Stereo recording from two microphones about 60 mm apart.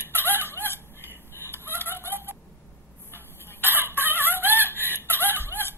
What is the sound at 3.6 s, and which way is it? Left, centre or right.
Chicken, right.